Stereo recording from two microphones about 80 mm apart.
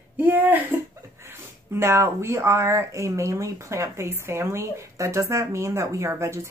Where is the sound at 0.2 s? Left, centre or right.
Right.